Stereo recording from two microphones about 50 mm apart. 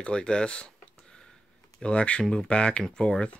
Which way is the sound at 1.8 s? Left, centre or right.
Left.